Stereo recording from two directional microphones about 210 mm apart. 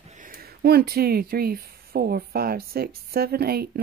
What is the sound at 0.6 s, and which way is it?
Speech, 50° right (ahead or behind).